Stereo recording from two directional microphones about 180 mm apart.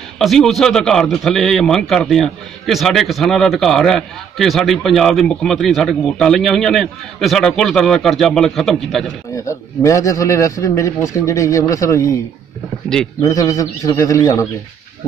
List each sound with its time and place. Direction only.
0.2 s a man's voice: centre (ahead or behind)
9.3 s a man's voice: 15° left (ahead or behind)
13.2 s a man's voice: 20° left (ahead or behind)